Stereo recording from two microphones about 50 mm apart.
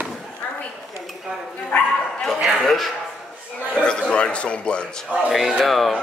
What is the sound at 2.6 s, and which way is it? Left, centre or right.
Speech, centre.